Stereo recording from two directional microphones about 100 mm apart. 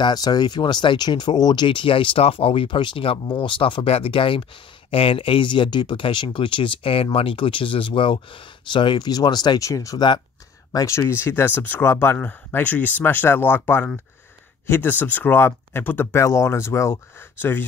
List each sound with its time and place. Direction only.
0.0 s speech: 40° left (ahead or behind); by 17.6 s 20° left (ahead or behind)